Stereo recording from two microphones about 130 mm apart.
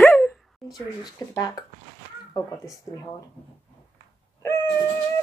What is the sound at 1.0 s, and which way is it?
Speech, 30° left (ahead or behind).